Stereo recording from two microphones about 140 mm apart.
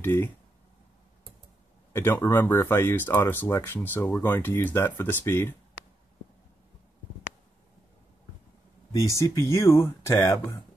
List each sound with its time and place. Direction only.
0.0 s speech: 15° left (ahead or behind)
1.9 s speech: 15° left (ahead or behind)
9.1 s speech: 20° left (ahead or behind)